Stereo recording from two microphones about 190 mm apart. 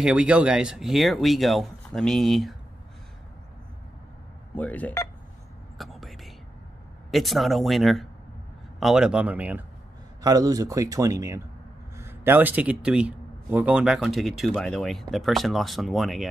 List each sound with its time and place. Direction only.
0.0 s a man's voice: 5° right (ahead or behind)
4.6 s speech: 10° left (ahead or behind)
5.8 s whispering: centre (ahead or behind)
7.1 s a man's voice: centre (ahead or behind)
10.2 s a man's voice: 20° right (ahead or behind); by 16.3 s centre (ahead or behind)